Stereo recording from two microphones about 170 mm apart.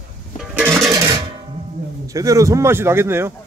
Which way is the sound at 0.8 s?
20° right (ahead or behind).